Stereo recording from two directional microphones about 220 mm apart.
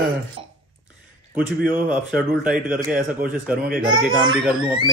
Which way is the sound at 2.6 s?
40° right (ahead or behind).